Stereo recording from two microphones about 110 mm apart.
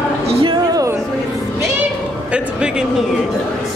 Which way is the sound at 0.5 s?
35° right (ahead or behind).